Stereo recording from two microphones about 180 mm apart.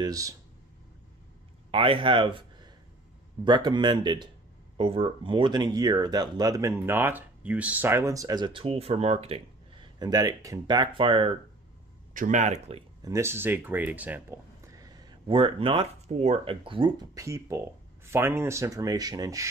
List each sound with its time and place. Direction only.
0.0 s speech: 20° right (ahead or behind)
1.7 s speech: 30° right (ahead or behind)
9.9 s speech: 20° right (ahead or behind)
12.1 s speech: 45° right (ahead or behind)
13.0 s speech: 15° right (ahead or behind)
15.2 s speech: 30° right (ahead or behind)